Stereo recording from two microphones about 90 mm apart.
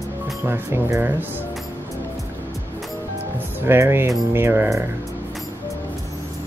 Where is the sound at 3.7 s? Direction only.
25° right (ahead or behind).